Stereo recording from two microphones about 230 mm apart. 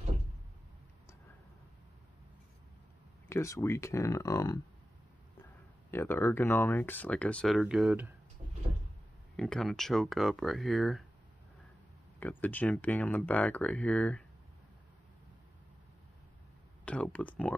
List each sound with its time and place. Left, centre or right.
3.3 s speech: centre
5.9 s speech: centre
9.4 s speech: centre
12.2 s speech: centre
16.8 s speech: centre